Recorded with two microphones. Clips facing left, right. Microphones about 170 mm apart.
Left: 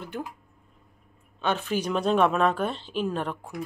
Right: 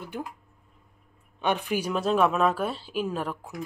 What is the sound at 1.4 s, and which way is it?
A woman's voice, 15° right (ahead or behind).